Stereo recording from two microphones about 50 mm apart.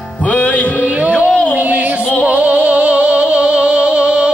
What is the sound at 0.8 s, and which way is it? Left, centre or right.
Music, right.